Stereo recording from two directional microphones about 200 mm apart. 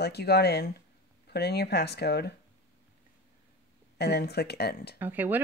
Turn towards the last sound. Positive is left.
turn(degrees=-10)  # may be behind; listen again after turning